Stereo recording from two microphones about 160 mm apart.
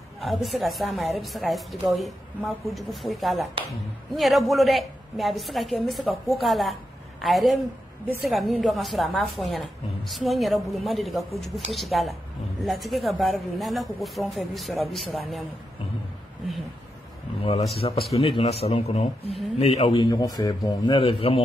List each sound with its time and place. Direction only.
0.2 s a woman's voice: centre (ahead or behind)
17.4 s speech: 40° left (ahead or behind)
20.0 s a man's voice: 20° left (ahead or behind)